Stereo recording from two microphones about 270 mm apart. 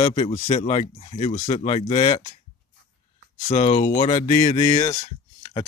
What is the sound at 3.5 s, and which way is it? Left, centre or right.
Speech, left.